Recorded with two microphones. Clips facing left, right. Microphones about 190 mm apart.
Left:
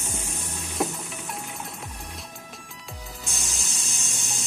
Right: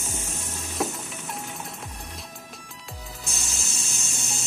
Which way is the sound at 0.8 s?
Centre (ahead or behind).